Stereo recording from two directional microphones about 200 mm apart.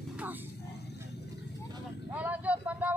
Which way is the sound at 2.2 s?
5° right (ahead or behind).